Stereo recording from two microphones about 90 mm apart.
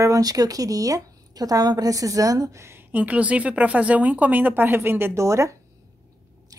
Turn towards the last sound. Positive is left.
turn(degrees=-35)  # may be behind; listen again after turning